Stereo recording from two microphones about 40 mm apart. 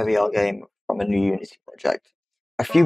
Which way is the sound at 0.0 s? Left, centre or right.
Centre.